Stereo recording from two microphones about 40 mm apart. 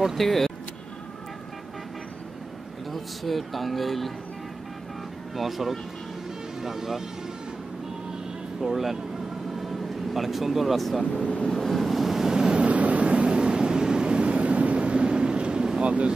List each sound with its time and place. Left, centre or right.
0.2 s speech: centre
2.9 s speech: centre
5.3 s speech: centre
8.5 s speech: centre
9.6 s vehicle: centre
11.4 s wind noise: centre
12.5 s vehicle: right
15.8 s speech: right